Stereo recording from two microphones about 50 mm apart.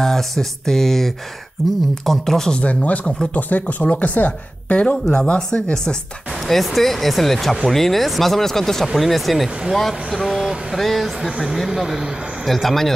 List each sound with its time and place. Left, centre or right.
0.0 s speech: centre
2.6 s speech: left
6.4 s speech: centre